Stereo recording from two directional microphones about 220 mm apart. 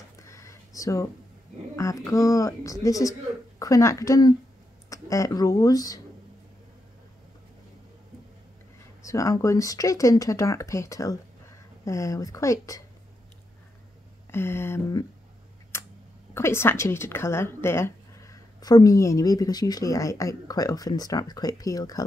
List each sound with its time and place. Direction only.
0.3 s a sound: 15° left (ahead or behind)
1.8 s a woman's voice: 15° left (ahead or behind)
9.0 s a woman's voice: 15° left (ahead or behind)
14.3 s a woman's voice: 10° left (ahead or behind)
15.7 s a sound: 10° left (ahead or behind)
16.3 s a woman's voice: 10° left (ahead or behind)